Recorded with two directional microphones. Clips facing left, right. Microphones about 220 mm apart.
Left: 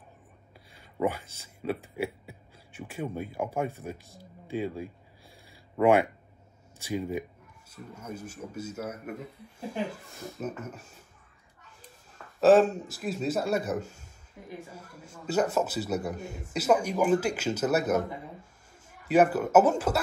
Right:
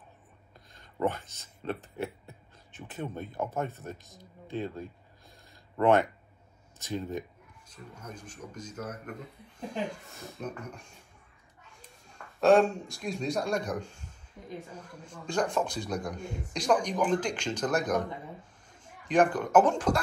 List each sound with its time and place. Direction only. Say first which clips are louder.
0.7 s speech: left 1 dB; 10° left (ahead or behind)
5.5 s a sound: left 2 dB; 10° left (ahead or behind)
6.8 s speech: left 3 dB; 10° left (ahead or behind)
12.2 s speech: left 2 dB; 5° left (ahead or behind)